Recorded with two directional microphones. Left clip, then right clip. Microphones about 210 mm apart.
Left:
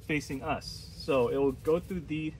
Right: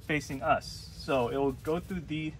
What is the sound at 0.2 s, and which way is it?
Speech, centre (ahead or behind).